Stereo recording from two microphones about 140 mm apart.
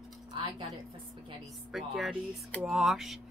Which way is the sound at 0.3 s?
35° right (ahead or behind).